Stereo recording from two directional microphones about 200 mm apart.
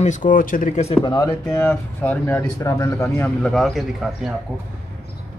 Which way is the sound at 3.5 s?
Centre (ahead or behind).